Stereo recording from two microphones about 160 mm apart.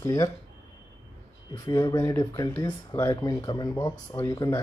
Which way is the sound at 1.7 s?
20° left (ahead or behind).